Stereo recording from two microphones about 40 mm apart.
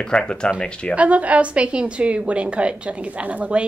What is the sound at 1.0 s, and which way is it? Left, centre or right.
A woman's voice, right.